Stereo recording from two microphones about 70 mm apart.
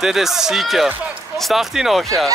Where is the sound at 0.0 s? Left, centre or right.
Centre.